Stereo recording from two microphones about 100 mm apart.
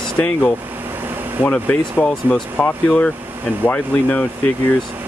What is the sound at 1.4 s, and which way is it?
Speech, 15° left (ahead or behind).